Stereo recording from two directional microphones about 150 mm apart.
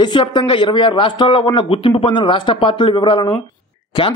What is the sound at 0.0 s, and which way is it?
Speech, 30° left (ahead or behind).